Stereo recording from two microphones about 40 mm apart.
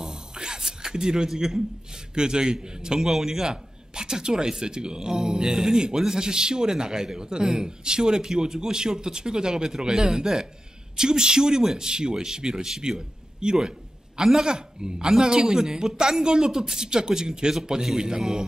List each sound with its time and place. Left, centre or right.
0.0 s a sound: centre
2.1 s a man's voice: centre
13.4 s a man's voice: right